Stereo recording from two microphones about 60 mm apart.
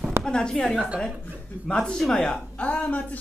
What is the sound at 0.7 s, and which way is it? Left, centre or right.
Speech, centre.